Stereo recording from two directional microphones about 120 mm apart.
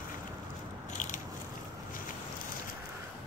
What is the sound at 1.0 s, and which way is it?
Biting, 90° left.